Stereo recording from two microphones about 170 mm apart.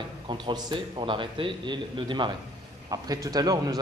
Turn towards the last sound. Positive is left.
turn(degrees=-20)  # may be behind; listen again after turning